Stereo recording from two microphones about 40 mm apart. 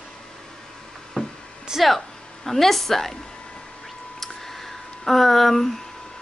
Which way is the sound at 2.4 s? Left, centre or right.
Centre.